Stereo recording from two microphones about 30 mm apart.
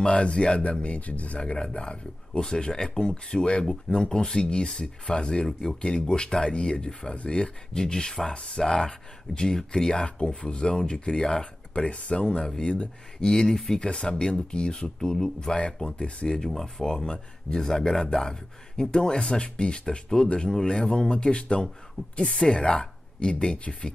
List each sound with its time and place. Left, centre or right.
0.0 s speech: left
1.4 s speech: left
10.0 s speech: left
13.2 s speech: centre
13.7 s speech: left
16.0 s speech: left
16.4 s speech: centre
16.8 s speech: left
20.3 s speech: left